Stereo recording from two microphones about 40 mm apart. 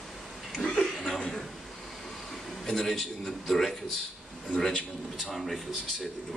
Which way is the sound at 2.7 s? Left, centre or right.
Centre.